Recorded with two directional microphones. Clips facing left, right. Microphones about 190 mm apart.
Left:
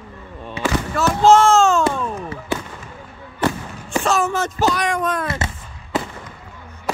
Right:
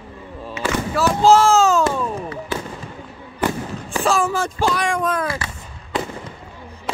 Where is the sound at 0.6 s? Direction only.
30° left (ahead or behind).